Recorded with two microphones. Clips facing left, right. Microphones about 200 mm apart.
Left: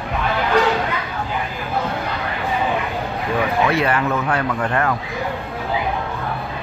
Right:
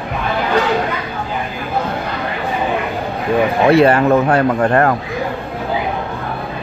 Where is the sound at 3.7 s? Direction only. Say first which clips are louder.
Right 9 dB; 30° right (ahead or behind).